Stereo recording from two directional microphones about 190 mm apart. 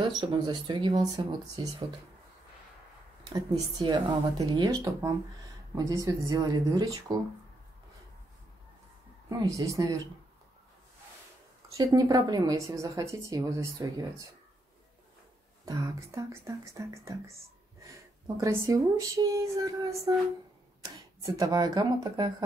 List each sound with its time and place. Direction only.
0.2 s speech: 25° right (ahead or behind)
3.3 s speech: 20° right (ahead or behind)
9.3 s a woman's voice: 15° right (ahead or behind)
11.7 s a woman's voice: 15° right (ahead or behind)
15.6 s a woman's voice: 20° right (ahead or behind)
18.4 s a woman's voice: 15° right (ahead or behind)